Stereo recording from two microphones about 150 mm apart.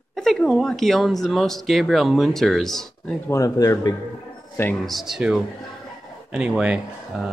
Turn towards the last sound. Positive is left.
turn(degrees=-5)  # may be behind; listen again after turning